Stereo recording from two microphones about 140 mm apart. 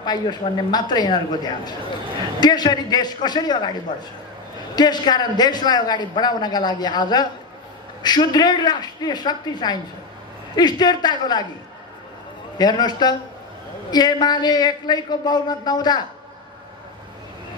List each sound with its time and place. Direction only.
0.0 s a man's voice: 30° left (ahead or behind)
4.7 s a man's voice: 30° left (ahead or behind)
12.5 s a woman's voice: 30° left (ahead or behind)